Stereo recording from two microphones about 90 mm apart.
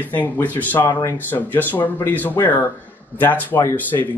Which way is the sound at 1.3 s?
20° left (ahead or behind).